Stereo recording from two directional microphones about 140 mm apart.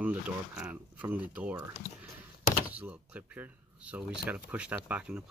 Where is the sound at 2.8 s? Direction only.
10° right (ahead or behind).